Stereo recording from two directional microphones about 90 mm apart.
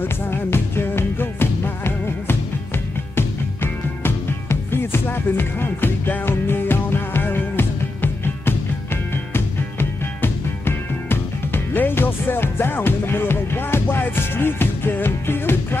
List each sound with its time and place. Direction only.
0.0 s music: 25° left (ahead or behind)